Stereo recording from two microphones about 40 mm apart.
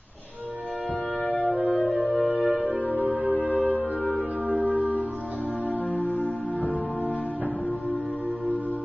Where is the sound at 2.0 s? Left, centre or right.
Centre.